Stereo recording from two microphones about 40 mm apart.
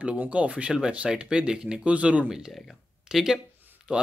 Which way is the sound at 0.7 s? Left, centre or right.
Centre.